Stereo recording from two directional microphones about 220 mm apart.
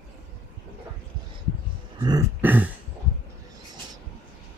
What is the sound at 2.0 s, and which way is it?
Throat clearing, 10° right (ahead or behind).